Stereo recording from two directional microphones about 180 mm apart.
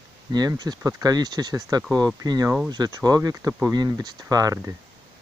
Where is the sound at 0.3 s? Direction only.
20° right (ahead or behind).